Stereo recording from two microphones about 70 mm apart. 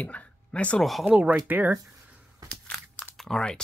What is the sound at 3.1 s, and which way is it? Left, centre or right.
Speech, centre.